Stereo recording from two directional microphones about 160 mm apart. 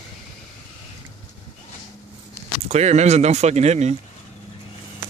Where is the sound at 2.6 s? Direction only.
45° right (ahead or behind).